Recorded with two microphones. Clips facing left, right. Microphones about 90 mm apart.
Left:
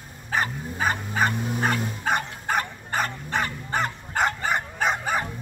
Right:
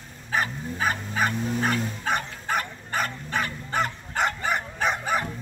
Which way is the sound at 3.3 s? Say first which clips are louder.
Left 2 dB; 10° left (ahead or behind).